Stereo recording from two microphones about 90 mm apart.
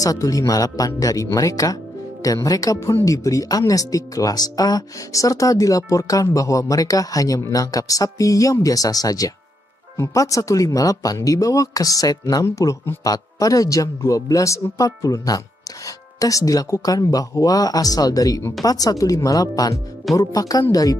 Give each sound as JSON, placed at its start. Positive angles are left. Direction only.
{"t": 0.0, "sound": "speech", "side_deg": 40}
{"t": 12.4, "sound": "speech", "side_deg": 35}